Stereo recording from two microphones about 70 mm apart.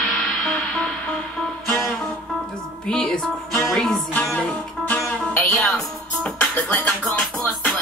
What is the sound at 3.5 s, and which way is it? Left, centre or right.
Music, centre.